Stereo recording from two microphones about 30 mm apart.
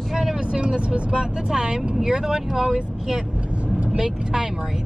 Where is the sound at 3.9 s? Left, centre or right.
Right.